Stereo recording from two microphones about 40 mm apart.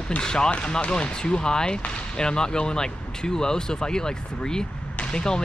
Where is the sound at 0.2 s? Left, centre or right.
Centre.